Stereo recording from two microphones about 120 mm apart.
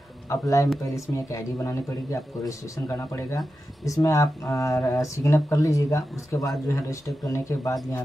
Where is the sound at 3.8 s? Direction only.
30° left (ahead or behind).